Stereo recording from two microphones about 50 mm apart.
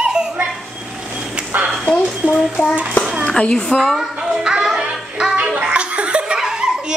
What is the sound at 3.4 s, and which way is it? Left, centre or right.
Speech, left.